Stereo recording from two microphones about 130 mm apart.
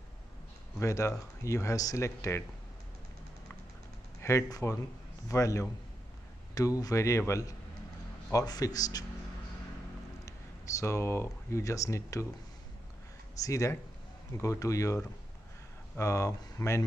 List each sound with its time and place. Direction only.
0.7 s a man's voice: 20° left (ahead or behind)
4.2 s a man's voice: 20° left (ahead or behind)
10.2 s speech: 25° left (ahead or behind)
13.4 s a man's voice: 25° left (ahead or behind)
16.0 s a man's voice: 20° left (ahead or behind)